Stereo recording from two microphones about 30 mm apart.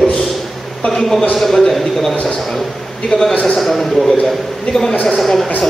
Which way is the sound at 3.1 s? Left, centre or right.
Left.